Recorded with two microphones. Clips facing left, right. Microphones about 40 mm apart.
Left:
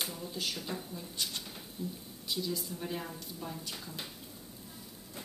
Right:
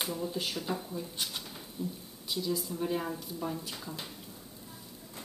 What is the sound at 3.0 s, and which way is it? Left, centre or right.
Speech, centre.